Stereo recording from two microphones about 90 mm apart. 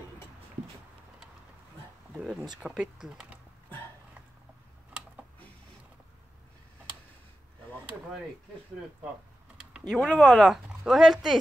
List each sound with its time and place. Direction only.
2.1 s speech: 5° right (ahead or behind)
9.6 s speech: 5° right (ahead or behind)